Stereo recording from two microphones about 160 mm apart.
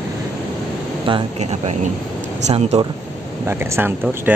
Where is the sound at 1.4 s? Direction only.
45° right (ahead or behind).